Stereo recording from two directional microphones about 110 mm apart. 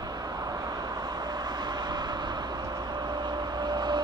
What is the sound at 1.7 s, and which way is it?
Vehicle, 40° right (ahead or behind).